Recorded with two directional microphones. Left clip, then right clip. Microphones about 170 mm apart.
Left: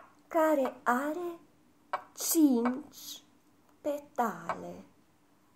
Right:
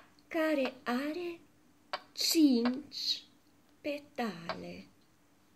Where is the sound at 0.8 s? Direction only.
30° right (ahead or behind).